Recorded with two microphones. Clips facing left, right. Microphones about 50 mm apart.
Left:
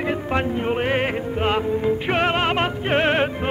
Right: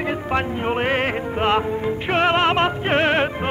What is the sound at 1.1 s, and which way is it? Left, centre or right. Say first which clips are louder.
Music: right 1 dB; right.